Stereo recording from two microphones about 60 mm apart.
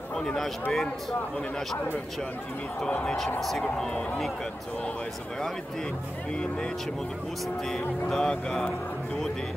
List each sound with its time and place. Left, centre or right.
0.1 s speech: centre
2.9 s speech: centre
3.3 s speech: centre
3.6 s speech: centre
7.7 s speech: centre